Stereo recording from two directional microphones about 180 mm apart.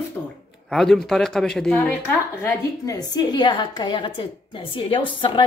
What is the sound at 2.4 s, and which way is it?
A woman's voice, 20° left (ahead or behind).